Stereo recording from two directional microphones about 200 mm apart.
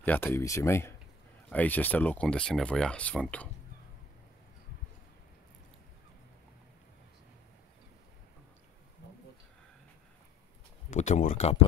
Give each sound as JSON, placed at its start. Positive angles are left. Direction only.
{"t": 0.0, "sound": "speech", "side_deg": 10}
{"t": 10.9, "sound": "speech", "side_deg": 35}